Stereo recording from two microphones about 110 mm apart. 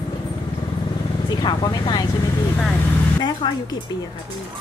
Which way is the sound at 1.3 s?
40° left (ahead or behind).